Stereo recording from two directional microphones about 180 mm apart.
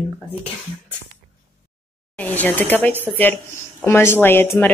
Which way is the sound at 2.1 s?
10° left (ahead or behind).